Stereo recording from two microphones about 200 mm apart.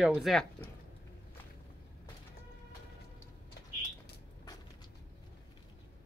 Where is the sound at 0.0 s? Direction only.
5° right (ahead or behind).